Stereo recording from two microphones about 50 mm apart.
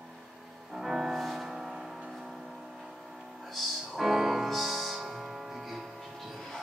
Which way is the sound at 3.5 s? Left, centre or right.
Centre.